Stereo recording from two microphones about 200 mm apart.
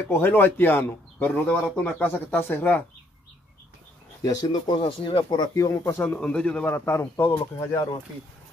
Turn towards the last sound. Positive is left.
turn(degrees=20)  # may be behind; listen again after turning